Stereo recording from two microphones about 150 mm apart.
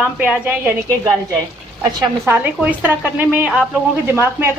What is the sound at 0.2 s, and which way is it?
A woman's voice, 10° right (ahead or behind).